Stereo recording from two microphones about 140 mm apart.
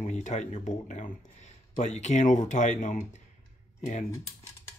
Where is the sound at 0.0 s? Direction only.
60° left (ahead or behind).